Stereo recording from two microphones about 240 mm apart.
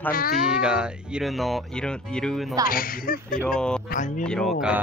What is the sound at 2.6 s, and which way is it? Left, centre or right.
Speech, left.